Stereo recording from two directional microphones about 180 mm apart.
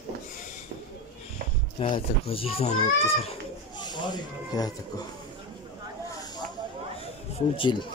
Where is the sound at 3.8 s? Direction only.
25° left (ahead or behind).